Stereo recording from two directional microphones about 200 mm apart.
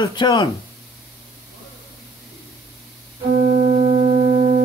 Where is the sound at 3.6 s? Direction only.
25° right (ahead or behind).